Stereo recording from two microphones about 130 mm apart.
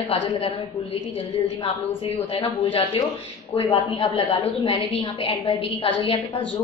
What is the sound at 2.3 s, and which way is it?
Speech, 45° left (ahead or behind).